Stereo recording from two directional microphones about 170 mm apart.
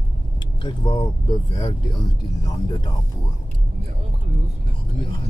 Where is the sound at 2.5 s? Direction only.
20° left (ahead or behind).